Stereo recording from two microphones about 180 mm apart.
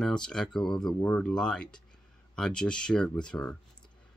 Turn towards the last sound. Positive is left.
turn(degrees=5)  # may be behind; listen again after turning